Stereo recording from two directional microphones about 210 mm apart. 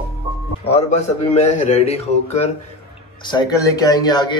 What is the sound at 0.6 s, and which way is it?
A man's voice, 30° left (ahead or behind).